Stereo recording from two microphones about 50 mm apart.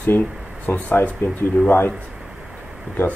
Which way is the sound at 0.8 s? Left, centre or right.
Left.